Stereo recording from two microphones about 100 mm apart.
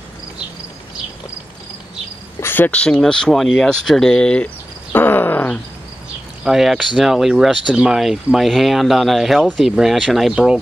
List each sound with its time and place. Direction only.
2.4 s speech: 20° left (ahead or behind)
4.9 s groan: 20° left (ahead or behind)
6.4 s speech: 5° right (ahead or behind)